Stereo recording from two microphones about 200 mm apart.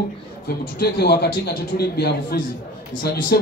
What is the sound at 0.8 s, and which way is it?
Speech, 50° left (ahead or behind).